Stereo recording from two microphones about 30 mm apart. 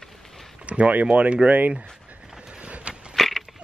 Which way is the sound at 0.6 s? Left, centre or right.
Right.